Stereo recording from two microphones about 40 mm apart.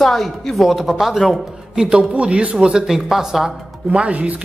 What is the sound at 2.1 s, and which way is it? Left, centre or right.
Speech, right.